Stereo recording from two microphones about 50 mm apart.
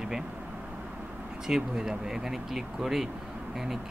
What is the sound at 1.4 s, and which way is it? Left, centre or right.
Speech, centre.